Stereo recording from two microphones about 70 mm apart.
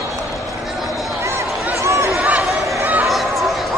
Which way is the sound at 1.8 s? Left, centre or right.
Right.